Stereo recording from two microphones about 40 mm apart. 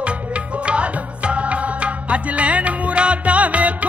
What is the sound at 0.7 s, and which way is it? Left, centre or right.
Music, right.